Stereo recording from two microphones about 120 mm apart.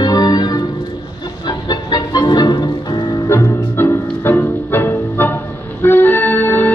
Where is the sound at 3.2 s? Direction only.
20° left (ahead or behind).